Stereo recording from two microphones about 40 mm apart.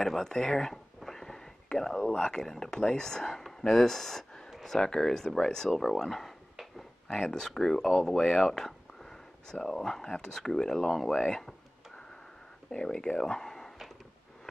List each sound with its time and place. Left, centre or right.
0.0 s speech: centre
6.5 s dog: centre
7.1 s speech: centre
12.7 s speech: centre